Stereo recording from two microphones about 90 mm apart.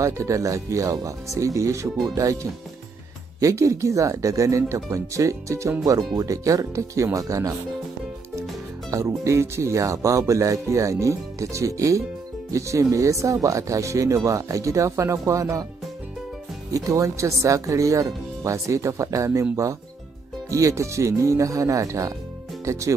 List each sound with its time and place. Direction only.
0.0 s speech: 35° right (ahead or behind)
8.9 s speech: 35° right (ahead or behind)
16.7 s speech: 35° right (ahead or behind)